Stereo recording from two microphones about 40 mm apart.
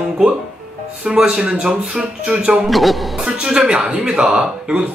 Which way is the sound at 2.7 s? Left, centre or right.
Centre.